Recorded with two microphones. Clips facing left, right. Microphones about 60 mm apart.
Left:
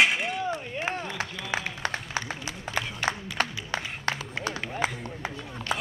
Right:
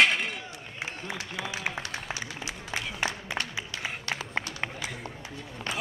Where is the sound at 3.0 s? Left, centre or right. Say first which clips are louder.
Left 4 dB; left.